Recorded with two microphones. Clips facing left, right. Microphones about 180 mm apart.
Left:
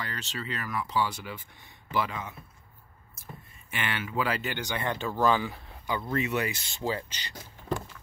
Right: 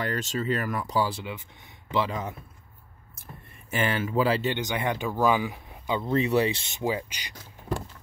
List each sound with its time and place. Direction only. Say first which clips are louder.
0.0 s speech: right 8 dB; 45° right (ahead or behind)
1.1 s speech: right 4 dB; 20° right (ahead or behind)
2.0 s speech: right 5 dB; 40° right (ahead or behind)
3.7 s speech: right 6 dB; 40° right (ahead or behind)
4.6 s speech: right 3 dB; 15° right (ahead or behind)